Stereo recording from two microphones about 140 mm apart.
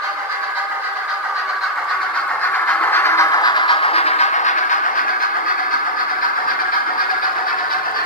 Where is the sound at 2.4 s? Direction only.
10° left (ahead or behind); by 5.0 s 65° left (ahead or behind).